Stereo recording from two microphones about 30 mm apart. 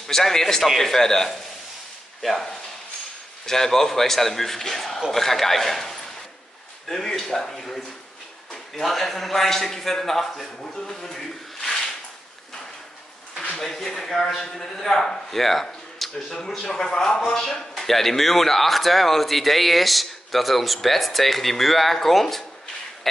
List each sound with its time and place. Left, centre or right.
0.0 s a man's voice: centre
3.4 s a man's voice: centre
13.7 s a man's voice: centre
15.3 s a man's voice: centre
16.0 s a sound: centre
16.6 s a man's voice: centre